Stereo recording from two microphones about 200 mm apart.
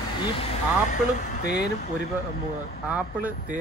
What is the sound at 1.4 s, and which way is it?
Speech, 50° left (ahead or behind).